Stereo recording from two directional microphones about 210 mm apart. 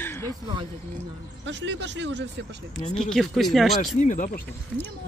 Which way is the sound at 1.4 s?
60° right (ahead or behind).